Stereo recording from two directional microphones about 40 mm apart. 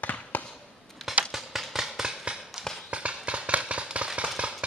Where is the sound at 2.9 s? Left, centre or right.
Right.